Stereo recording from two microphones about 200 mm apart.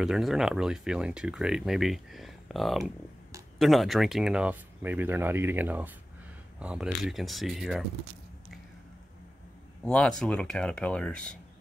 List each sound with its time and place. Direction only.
0.0 s speech: centre (ahead or behind)
2.8 s a sound: 15° right (ahead or behind)
3.5 s speech: centre (ahead or behind)
9.8 s speech: 5° left (ahead or behind)